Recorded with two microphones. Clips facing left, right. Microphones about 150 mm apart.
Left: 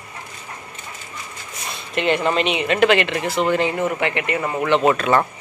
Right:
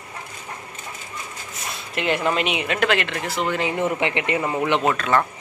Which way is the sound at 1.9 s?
5° right (ahead or behind).